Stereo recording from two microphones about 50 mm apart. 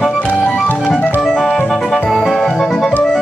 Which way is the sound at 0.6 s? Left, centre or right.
Left.